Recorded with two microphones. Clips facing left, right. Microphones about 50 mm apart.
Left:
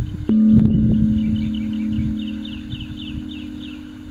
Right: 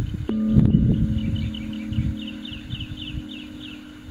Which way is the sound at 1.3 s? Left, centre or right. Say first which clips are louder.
Left 8 dB; centre.